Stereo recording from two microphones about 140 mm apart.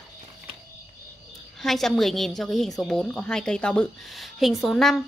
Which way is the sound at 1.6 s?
Centre (ahead or behind).